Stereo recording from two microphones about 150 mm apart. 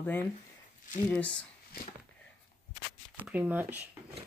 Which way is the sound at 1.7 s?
80° left.